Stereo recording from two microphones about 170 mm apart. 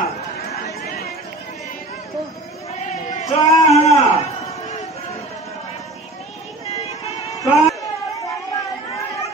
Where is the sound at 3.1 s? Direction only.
45° left (ahead or behind).